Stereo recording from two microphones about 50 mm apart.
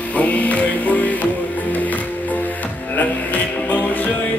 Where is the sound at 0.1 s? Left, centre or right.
Left.